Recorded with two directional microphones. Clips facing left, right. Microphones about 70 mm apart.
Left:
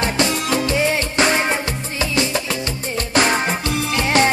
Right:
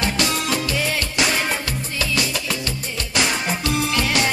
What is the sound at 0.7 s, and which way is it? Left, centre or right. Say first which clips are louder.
Music: left 5 dB; left.